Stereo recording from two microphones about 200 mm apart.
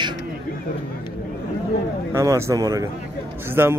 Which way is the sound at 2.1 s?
15° right (ahead or behind).